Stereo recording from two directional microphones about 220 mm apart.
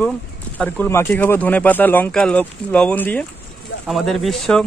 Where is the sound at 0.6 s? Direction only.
5° left (ahead or behind).